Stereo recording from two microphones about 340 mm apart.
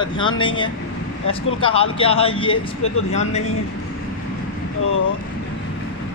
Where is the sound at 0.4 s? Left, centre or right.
Centre.